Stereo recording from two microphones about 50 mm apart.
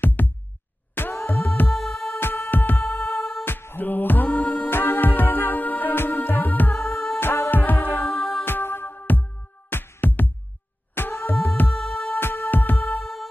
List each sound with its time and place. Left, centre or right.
0.0 s music: left
1.7 s music: centre
2.1 s music: left
3.4 s music: left
4.6 s music: left
7.2 s music: left
8.1 s music: centre
8.5 s music: left
9.7 s music: left
9.9 s music: left
11.7 s music: centre
12.2 s music: left
12.9 s music: centre